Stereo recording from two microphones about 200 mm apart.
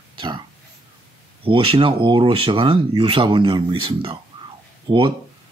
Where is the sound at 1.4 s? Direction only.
25° right (ahead or behind).